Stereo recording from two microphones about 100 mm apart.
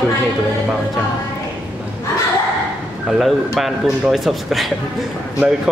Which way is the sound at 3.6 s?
Centre (ahead or behind).